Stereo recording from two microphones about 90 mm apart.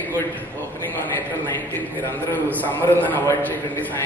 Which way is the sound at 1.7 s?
20° left (ahead or behind).